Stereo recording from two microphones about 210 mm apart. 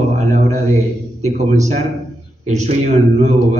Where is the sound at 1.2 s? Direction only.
35° right (ahead or behind).